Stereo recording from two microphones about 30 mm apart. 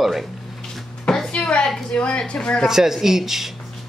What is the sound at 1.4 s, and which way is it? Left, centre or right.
A woman's voice, left.